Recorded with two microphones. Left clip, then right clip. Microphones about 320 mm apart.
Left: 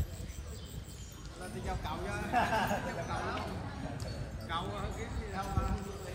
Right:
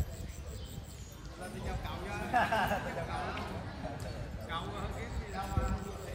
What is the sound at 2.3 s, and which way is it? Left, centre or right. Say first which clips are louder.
Speech: right 1 dB; centre.